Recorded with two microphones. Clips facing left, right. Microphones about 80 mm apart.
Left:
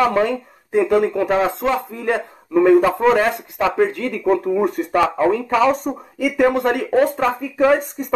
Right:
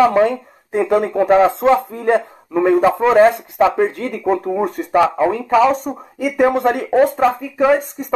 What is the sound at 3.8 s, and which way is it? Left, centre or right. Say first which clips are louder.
Speech: even; right.